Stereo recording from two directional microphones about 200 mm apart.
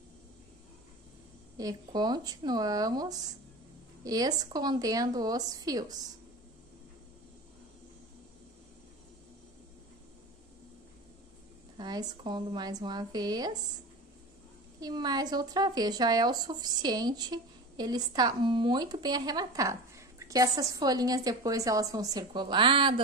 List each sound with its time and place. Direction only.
1.6 s speech: 20° right (ahead or behind)
11.7 s speech: 20° right (ahead or behind)
14.8 s speech: 20° right (ahead or behind)